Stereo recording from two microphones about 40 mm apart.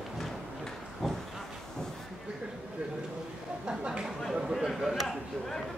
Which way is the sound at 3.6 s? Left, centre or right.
Right.